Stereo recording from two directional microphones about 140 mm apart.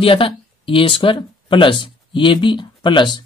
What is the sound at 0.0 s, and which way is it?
Speech, 40° left (ahead or behind).